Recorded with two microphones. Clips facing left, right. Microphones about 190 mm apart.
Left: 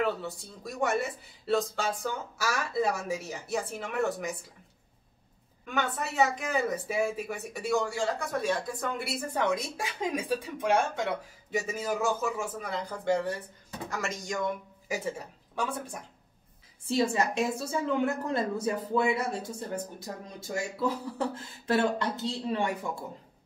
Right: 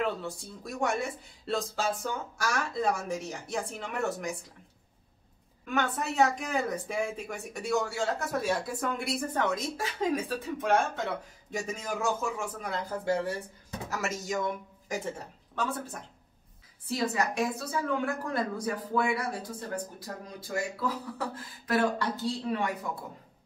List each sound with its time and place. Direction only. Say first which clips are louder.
0.0 s speech: left 1 dB; centre (ahead or behind)
5.7 s speech: right 1 dB; centre (ahead or behind)
14.9 s a woman's voice: left 1 dB; 10° left (ahead or behind)
16.8 s a woman's voice: left 3 dB; 25° left (ahead or behind)